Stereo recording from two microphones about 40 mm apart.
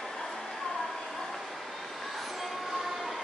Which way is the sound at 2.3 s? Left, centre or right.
Centre.